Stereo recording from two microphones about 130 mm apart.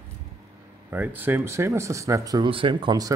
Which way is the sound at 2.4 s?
40° right (ahead or behind).